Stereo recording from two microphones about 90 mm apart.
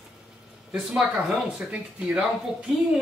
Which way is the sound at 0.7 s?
5° right (ahead or behind).